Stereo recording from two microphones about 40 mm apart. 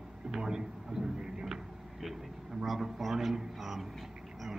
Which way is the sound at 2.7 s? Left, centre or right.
Centre.